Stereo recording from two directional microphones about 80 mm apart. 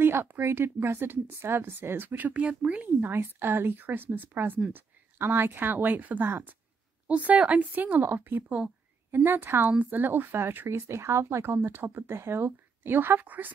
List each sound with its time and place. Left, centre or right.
0.0 s speech: right
3.0 s speech: right